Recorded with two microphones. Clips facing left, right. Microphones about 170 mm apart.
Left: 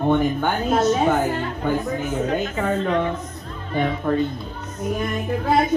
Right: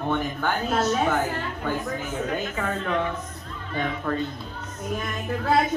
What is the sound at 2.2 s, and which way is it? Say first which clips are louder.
Speech: left 5 dB; 30° left (ahead or behind).